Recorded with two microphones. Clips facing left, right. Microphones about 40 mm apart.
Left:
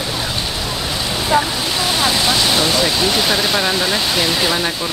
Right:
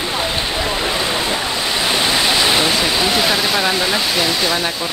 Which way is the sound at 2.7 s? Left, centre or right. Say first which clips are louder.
Even; centre.